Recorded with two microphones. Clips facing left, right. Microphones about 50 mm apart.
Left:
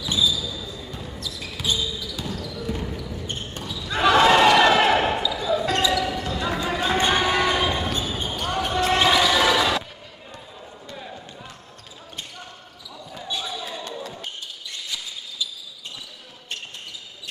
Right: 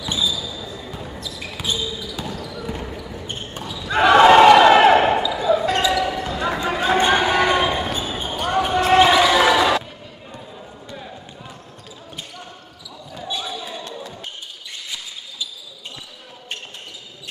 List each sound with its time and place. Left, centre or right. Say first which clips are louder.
0.0 s basketball bounce: even; centre
13.2 s basketball bounce: right 2 dB; centre
14.7 s basketball bounce: even; right